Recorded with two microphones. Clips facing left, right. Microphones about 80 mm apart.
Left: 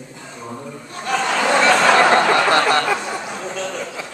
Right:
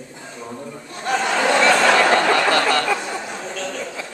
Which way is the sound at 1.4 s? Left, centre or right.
Centre.